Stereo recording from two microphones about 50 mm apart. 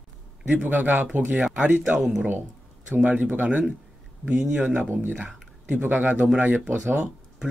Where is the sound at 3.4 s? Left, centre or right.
Centre.